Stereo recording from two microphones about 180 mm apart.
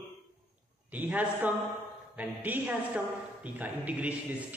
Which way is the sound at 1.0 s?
10° right (ahead or behind).